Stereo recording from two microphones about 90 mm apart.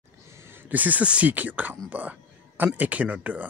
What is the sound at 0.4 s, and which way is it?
Speech, 25° right (ahead or behind).